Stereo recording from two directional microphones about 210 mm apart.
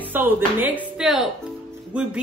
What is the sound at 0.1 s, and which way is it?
A woman's voice, 10° right (ahead or behind).